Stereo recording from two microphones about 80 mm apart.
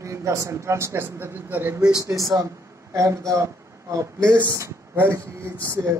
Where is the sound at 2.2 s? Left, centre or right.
Right.